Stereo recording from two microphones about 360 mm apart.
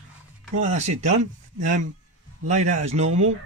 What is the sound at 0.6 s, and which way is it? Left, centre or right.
Speech, centre.